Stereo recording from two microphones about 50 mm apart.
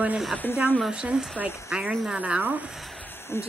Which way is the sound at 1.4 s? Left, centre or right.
Left.